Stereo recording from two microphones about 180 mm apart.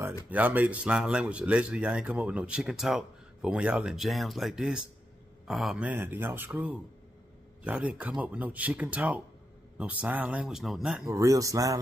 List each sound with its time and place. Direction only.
0.3 s speech: 10° right (ahead or behind)
11.1 s speech: 20° right (ahead or behind)